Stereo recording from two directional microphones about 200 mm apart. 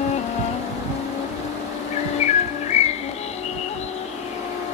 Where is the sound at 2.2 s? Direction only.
35° left (ahead or behind).